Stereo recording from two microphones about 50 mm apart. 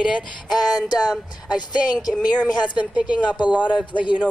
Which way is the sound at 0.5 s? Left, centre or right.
Centre.